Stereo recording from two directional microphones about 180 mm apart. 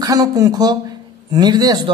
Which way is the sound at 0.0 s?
20° right (ahead or behind).